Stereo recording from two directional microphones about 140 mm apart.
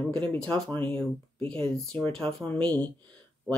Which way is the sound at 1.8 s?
5° left (ahead or behind).